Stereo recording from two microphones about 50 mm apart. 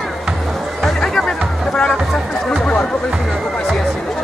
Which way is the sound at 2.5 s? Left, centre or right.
Centre.